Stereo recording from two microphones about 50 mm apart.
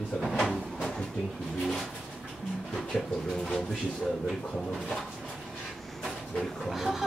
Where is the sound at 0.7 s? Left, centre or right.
Centre.